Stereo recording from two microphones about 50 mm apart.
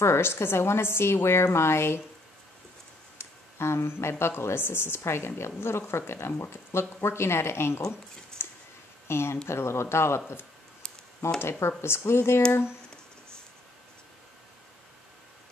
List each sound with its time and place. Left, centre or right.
0.0 s speech: left
3.5 s speech: left
8.3 s a sound: centre
9.0 s speech: left
10.8 s computer keyboard: centre
11.8 s speech: left